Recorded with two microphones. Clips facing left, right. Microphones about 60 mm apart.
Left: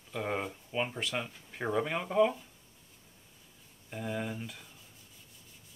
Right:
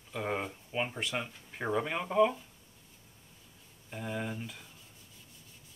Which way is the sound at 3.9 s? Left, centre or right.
Centre.